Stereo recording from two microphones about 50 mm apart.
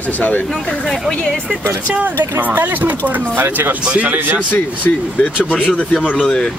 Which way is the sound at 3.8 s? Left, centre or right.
Right.